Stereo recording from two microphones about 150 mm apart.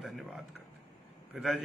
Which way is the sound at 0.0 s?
Centre (ahead or behind).